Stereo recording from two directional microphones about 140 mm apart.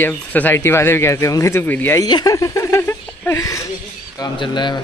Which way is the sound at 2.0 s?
30° left (ahead or behind).